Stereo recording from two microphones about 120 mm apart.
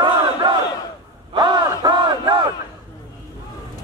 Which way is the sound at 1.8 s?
40° right (ahead or behind).